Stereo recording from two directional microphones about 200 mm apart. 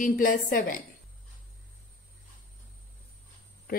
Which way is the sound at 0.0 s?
40° left (ahead or behind).